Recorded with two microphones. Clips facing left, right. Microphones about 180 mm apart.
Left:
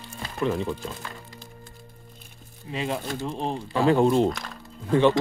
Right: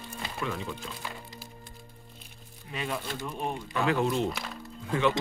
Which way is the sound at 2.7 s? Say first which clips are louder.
Left 5 dB; 30° left (ahead or behind).